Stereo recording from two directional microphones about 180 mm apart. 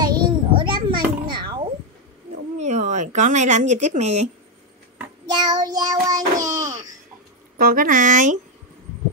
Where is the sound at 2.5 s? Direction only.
40° right (ahead or behind).